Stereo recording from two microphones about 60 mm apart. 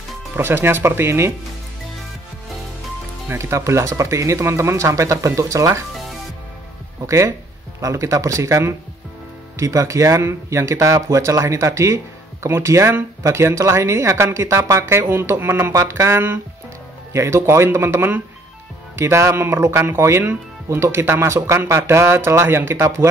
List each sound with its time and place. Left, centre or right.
0.4 s speech: right
3.3 s speech: right
7.1 s speech: right
11.0 s speech: right
17.1 s speech: right
18.9 s speech: right